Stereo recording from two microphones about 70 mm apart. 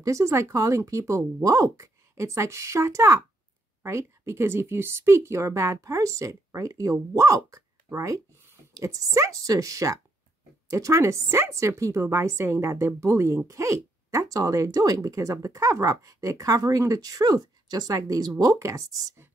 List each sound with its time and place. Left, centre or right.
0.0 s a woman's voice: right